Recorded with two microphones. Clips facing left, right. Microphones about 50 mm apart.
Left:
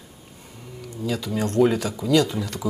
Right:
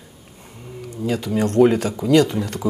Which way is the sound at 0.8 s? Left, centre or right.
Right.